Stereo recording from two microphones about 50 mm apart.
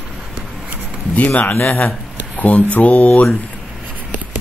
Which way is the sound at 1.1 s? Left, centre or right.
Left.